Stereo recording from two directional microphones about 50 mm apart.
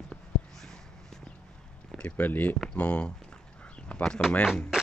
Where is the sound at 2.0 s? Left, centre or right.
Left.